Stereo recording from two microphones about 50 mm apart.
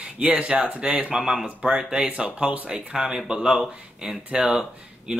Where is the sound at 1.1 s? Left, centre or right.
Centre.